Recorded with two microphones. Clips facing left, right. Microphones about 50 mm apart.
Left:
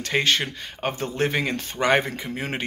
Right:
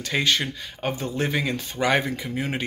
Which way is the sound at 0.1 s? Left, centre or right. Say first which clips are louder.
Left 2 dB; left.